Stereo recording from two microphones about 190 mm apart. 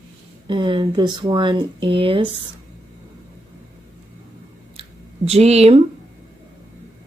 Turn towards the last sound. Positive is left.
turn(degrees=-35)  # may be behind; listen again after turning